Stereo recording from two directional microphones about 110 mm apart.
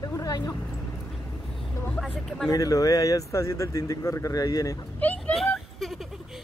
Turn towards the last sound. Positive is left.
turn(degrees=-5)  # may be behind; listen again after turning